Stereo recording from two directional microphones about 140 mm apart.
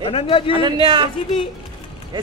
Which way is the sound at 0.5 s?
35° right (ahead or behind).